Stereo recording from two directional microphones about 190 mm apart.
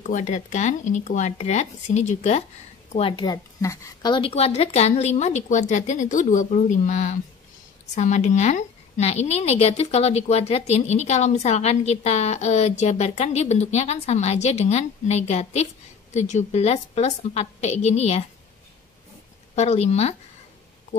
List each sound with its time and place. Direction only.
0.0 s a woman's voice: 40° left (ahead or behind)
19.5 s a woman's voice: 35° left (ahead or behind)